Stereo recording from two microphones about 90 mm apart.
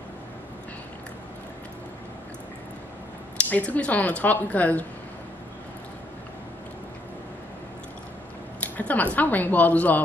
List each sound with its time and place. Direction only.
3.3 s speech: 15° left (ahead or behind)
8.5 s speech: 15° left (ahead or behind)